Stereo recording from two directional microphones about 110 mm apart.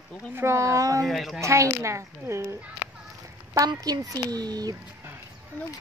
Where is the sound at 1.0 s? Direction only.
Centre (ahead or behind).